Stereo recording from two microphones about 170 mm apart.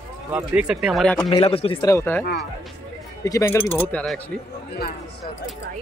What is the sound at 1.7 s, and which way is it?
Speech, 15° left (ahead or behind).